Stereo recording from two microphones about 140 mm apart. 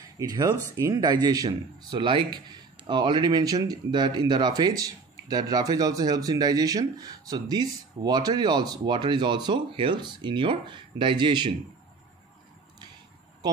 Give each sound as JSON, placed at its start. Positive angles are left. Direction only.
{"t": 0.2, "sound": "speech", "side_deg": -30}